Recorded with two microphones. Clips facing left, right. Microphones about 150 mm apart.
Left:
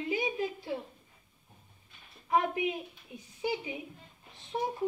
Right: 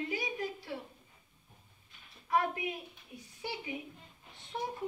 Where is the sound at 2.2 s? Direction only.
20° left (ahead or behind).